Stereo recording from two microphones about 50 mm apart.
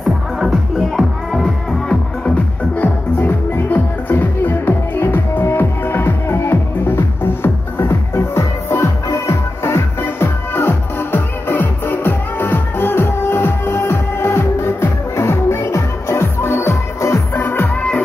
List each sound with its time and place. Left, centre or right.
0.9 s music: centre
1.9 s music: left
3.2 s music: left
5.4 s music: left
9.3 s music: left
17.3 s music: left